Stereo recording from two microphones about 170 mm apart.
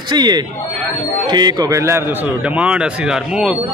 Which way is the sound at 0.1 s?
25° right (ahead or behind).